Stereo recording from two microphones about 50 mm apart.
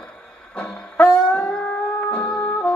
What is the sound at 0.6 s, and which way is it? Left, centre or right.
Music, left.